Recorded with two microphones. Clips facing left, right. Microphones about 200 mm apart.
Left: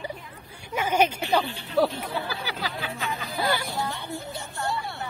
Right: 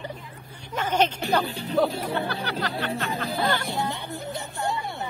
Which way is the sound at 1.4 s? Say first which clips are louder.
Right 1 dB; 40° right (ahead or behind).